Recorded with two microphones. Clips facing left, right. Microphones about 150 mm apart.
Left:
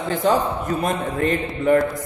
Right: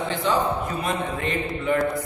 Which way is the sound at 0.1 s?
45° left (ahead or behind).